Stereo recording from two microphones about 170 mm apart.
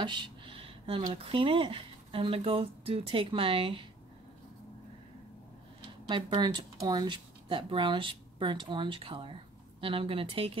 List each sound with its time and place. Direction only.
0.0 s speech: 25° right (ahead or behind)
6.0 s speech: 30° right (ahead or behind)